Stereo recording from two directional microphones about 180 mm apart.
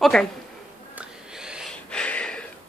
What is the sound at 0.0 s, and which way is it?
Speech, 5° left (ahead or behind).